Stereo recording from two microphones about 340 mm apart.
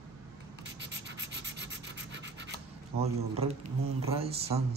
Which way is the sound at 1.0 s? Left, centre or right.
Right.